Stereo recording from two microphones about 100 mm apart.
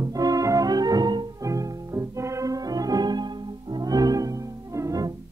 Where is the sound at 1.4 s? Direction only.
30° right (ahead or behind).